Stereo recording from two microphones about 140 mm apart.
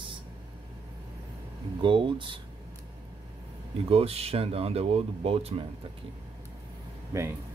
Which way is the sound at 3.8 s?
45° right (ahead or behind).